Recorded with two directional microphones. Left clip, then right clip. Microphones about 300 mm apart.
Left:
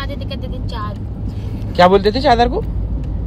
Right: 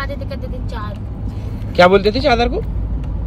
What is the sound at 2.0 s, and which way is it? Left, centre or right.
Speech, centre.